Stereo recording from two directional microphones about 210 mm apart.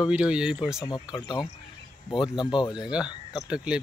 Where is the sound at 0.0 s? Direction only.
5° right (ahead or behind).